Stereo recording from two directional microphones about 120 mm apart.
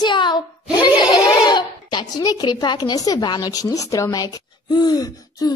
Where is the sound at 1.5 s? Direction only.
35° left (ahead or behind).